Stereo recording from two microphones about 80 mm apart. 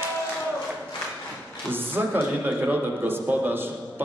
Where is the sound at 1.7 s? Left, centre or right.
Right.